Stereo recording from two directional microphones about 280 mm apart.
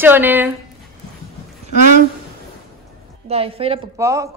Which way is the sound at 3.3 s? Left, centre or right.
Centre.